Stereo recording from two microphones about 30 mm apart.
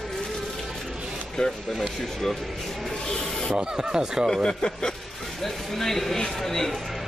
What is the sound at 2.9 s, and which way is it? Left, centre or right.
Speech, left.